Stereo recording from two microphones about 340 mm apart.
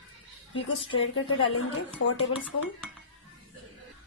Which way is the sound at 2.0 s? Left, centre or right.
Left.